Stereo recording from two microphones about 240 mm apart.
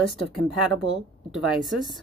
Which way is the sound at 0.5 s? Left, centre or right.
Centre.